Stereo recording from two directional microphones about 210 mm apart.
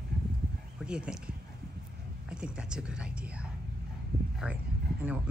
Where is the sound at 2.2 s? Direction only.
5° right (ahead or behind).